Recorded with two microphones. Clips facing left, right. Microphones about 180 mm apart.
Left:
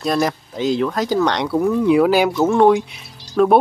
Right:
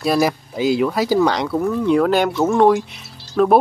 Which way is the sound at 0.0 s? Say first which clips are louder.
Right 2 dB; 5° right (ahead or behind).